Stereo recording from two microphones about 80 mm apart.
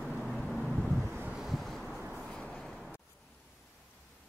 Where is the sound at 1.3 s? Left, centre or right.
Centre.